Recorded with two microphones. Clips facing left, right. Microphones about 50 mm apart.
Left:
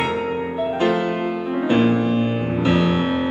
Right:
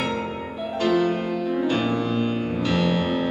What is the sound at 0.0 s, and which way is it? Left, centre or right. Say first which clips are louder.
Music: left 5 dB; left.